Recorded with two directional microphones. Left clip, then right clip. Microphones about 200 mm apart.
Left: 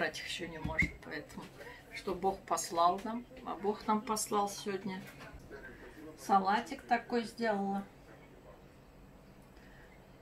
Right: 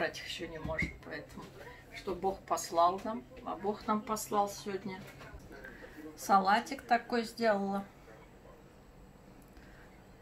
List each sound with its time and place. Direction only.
0.0 s speech: centre (ahead or behind)
6.1 s speech: 40° right (ahead or behind)